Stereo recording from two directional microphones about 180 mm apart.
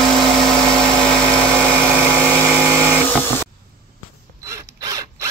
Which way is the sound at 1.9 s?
10° right (ahead or behind).